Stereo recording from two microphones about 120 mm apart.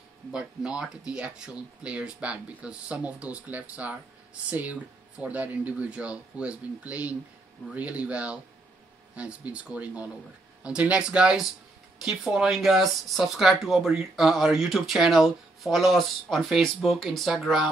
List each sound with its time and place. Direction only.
0.3 s speech: 5° right (ahead or behind)